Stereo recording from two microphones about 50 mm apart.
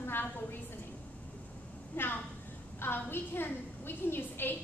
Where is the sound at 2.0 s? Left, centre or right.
Left.